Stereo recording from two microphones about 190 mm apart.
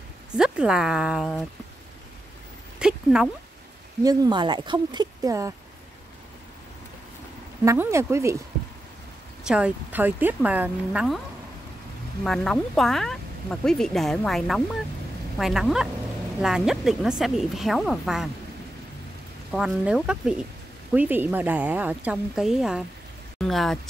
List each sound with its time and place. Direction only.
0.4 s speech: 5° right (ahead or behind)
2.8 s a sound: 5° right (ahead or behind)
4.0 s speech: 20° right (ahead or behind)
7.6 s a woman's voice: 15° right (ahead or behind)
9.5 s a woman's voice: 10° right (ahead or behind)
12.3 s speech: centre (ahead or behind)
19.5 s a woman's voice: 5° right (ahead or behind)